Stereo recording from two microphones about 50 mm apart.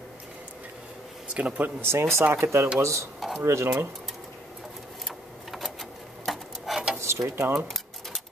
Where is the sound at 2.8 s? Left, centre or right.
Right.